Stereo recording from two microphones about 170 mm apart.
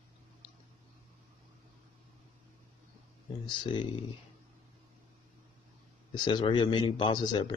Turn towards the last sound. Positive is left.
turn(degrees=25)  # may be behind; listen again after turning